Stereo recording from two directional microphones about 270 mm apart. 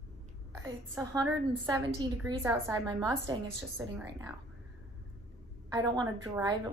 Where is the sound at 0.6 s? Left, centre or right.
Centre.